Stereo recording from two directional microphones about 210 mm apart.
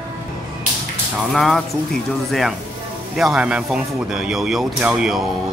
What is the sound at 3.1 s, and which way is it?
A man's voice, centre (ahead or behind).